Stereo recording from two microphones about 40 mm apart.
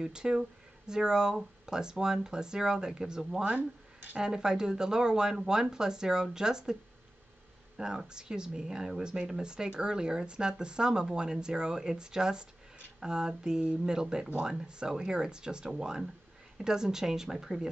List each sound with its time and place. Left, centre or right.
0.0 s speech: centre